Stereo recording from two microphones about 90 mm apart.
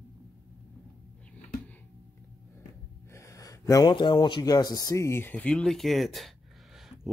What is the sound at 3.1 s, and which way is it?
Gasp, 35° left (ahead or behind).